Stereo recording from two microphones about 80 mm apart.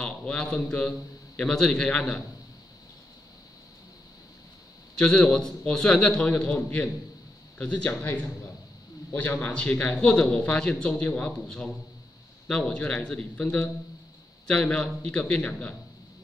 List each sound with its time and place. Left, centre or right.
0.0 s a man's voice: centre
4.9 s a man's voice: centre